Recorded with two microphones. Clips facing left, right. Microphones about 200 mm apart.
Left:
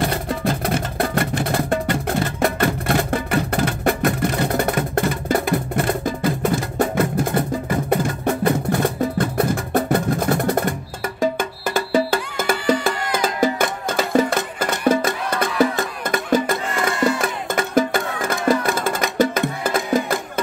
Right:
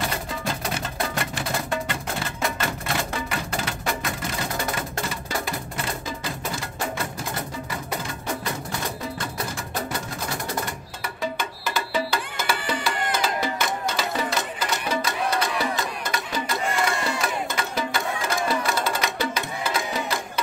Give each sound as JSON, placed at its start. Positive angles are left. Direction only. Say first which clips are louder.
{"t": 0.1, "sound": "music", "louder": "left 7 dB", "side_deg": 55}